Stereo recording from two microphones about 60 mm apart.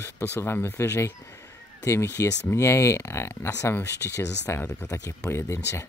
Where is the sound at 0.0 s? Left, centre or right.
Left.